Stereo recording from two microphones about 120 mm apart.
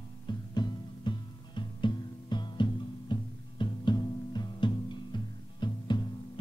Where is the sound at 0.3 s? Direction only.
40° left (ahead or behind).